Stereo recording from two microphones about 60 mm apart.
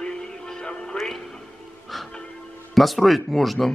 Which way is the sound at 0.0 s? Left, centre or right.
Centre.